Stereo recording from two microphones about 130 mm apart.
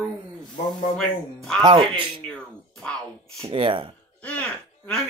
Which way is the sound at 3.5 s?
40° right (ahead or behind).